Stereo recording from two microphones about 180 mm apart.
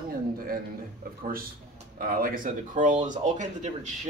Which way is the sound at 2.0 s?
50° right (ahead or behind).